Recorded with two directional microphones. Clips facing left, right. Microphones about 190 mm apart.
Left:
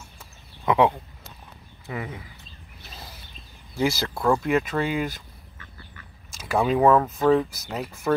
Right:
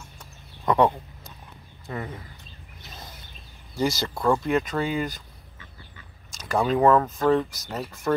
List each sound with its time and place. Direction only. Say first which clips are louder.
0.2 s a sound: left 1 dB; 5° left (ahead or behind)
1.9 s speech: left 1 dB; 5° left (ahead or behind)
3.7 s speech: left 1 dB; 5° left (ahead or behind)
6.3 s speech: left 1 dB; 5° left (ahead or behind)